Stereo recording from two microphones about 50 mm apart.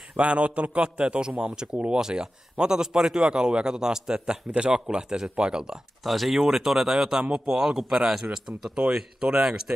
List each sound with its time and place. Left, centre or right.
0.1 s a man's voice: right
6.0 s speech: centre